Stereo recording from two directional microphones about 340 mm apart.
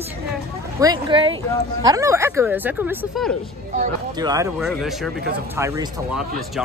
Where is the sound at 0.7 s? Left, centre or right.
Centre.